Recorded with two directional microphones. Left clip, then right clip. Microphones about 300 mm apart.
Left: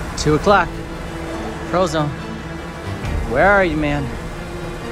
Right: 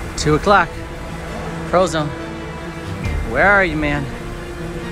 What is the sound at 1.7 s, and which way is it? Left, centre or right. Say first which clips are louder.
Speech: right 2 dB; centre.